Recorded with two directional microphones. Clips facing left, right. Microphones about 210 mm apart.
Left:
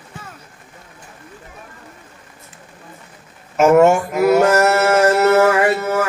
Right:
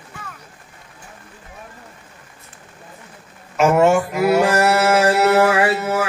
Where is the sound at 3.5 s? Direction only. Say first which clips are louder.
Left 3 dB; 45° left (ahead or behind).